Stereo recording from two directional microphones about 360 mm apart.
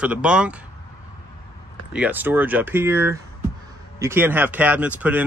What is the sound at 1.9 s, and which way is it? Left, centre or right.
Speech, centre.